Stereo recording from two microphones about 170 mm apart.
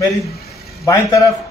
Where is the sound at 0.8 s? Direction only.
20° left (ahead or behind).